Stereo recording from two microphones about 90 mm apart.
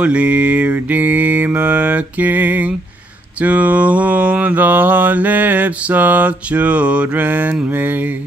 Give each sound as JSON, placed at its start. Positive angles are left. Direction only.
{"t": 0.0, "sound": "mantra", "side_deg": -15}